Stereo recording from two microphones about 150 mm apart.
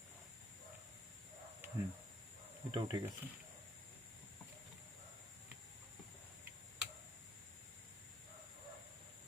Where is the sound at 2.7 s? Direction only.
30° right (ahead or behind).